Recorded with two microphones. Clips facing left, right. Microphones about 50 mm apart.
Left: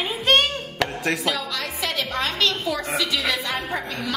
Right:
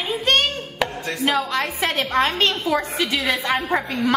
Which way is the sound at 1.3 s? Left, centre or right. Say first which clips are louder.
Right 5 dB; right.